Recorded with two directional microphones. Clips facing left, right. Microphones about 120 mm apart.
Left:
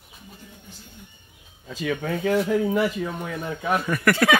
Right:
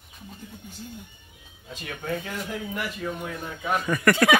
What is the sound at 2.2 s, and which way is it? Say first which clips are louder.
Speech: left 12 dB; 75° left (ahead or behind).